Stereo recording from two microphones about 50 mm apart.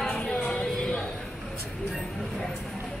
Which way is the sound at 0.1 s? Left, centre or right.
Left.